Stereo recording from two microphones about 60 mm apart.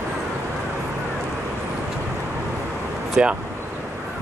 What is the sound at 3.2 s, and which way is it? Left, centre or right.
Speech, centre.